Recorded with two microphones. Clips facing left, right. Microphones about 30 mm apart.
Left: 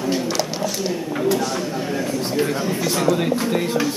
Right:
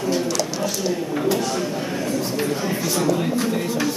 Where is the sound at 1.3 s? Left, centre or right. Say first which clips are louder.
Left 1 dB; centre.